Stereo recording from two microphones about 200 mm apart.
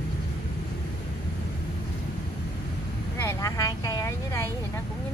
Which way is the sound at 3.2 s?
15° left (ahead or behind).